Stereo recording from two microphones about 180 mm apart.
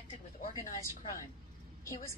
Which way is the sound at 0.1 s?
30° left (ahead or behind).